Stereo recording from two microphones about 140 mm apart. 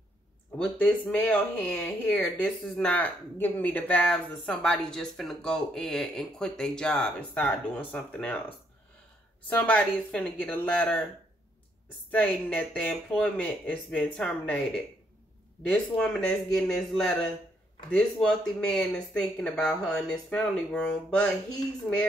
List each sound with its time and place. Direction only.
0.6 s speech: 10° left (ahead or behind)
9.6 s speech: 10° left (ahead or behind)
12.1 s speech: 10° left (ahead or behind)
15.7 s speech: 5° left (ahead or behind)